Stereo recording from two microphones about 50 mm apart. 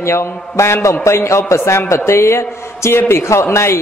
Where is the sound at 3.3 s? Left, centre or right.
Left.